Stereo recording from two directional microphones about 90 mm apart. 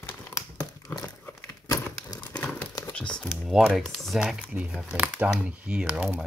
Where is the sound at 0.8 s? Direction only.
40° left (ahead or behind).